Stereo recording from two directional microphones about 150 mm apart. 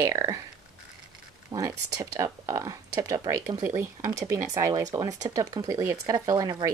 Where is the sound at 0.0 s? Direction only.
25° right (ahead or behind).